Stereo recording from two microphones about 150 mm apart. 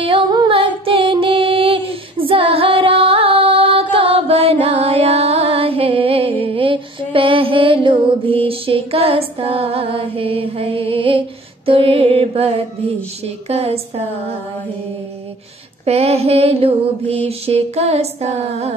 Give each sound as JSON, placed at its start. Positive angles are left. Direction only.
{"t": 0.0, "sound": "music", "side_deg": -30}
{"t": 13.2, "sound": "female singing", "side_deg": -40}
{"t": 15.8, "sound": "female singing", "side_deg": -45}